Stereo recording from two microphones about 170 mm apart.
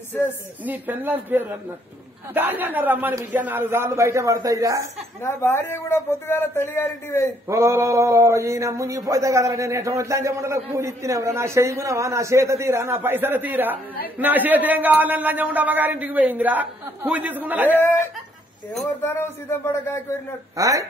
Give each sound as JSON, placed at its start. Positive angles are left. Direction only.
{"t": 0.7, "sound": "a sound", "side_deg": -10}
{"t": 5.2, "sound": "a man's voice", "side_deg": 15}
{"t": 7.4, "sound": "a sound", "side_deg": -20}
{"t": 17.6, "sound": "a man's voice", "side_deg": 10}
{"t": 19.0, "sound": "a man's voice", "side_deg": 15}
{"t": 20.5, "sound": "speech", "side_deg": -20}